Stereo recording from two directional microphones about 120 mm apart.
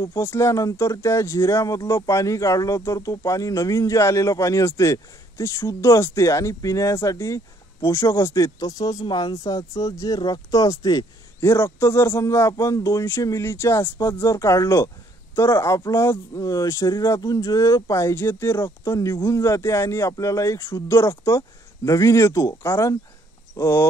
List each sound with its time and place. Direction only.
0.0 s speech: 20° left (ahead or behind)